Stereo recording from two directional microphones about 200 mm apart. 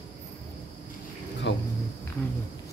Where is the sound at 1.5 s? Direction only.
65° left (ahead or behind).